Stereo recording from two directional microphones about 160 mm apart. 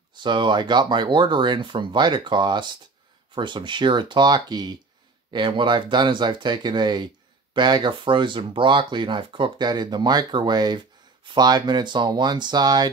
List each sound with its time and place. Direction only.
0.1 s speech: 30° right (ahead or behind)